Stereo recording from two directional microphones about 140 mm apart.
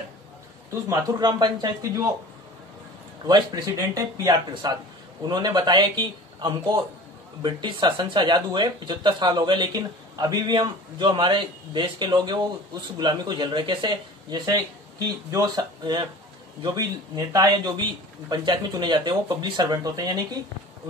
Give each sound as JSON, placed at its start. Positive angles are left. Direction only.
{"t": 0.8, "sound": "a man's voice", "side_deg": -30}
{"t": 3.3, "sound": "a man's voice", "side_deg": -30}